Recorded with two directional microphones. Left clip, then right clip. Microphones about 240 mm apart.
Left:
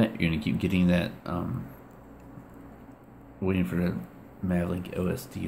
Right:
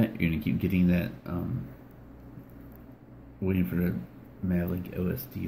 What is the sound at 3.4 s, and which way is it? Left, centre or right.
Speech, centre.